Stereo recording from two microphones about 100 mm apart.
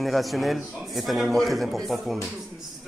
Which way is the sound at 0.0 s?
Centre (ahead or behind).